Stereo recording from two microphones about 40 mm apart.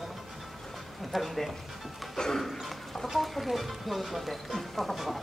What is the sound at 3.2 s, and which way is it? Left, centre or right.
Music, centre.